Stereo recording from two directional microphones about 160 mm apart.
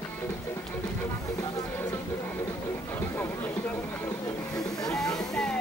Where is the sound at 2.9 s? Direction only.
10° left (ahead or behind).